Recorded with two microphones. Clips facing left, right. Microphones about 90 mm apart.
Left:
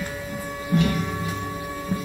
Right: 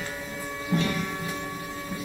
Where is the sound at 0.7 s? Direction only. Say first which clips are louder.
Left 4 dB; 15° left (ahead or behind).